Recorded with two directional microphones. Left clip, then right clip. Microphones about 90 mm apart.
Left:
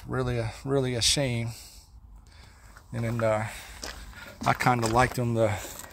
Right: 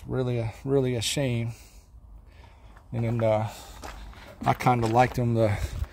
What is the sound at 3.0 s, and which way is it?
Speech, 65° right (ahead or behind).